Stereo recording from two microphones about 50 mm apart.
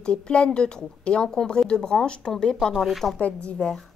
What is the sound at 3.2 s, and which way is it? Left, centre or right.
Speech, left.